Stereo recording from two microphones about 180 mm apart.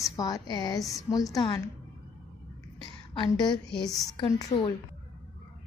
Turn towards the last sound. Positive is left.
turn(degrees=25)  # may be behind; listen again after turning